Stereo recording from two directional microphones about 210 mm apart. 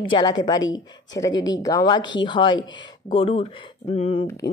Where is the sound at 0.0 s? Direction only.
20° left (ahead or behind).